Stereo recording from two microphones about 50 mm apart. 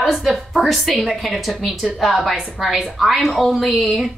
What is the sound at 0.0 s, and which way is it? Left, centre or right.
Speech, centre.